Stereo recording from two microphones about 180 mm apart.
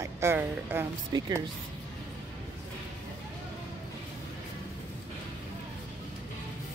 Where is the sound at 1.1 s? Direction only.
20° right (ahead or behind).